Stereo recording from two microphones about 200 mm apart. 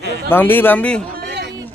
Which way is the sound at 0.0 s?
55° right (ahead or behind).